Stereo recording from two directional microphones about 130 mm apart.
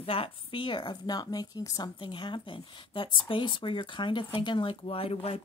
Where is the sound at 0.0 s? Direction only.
45° left (ahead or behind).